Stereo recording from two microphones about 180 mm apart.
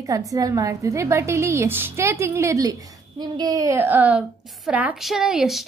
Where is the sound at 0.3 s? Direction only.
20° right (ahead or behind).